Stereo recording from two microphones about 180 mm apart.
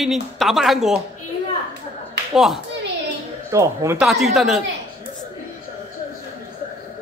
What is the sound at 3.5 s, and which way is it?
Speech, 15° right (ahead or behind).